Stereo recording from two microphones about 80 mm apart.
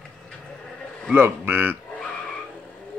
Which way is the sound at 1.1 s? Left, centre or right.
Right.